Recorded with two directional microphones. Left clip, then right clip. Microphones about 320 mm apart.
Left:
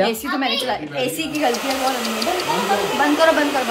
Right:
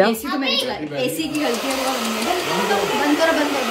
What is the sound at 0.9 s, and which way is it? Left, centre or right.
Speech, centre.